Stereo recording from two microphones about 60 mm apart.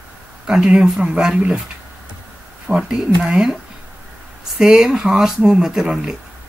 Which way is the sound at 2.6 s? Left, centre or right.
Centre.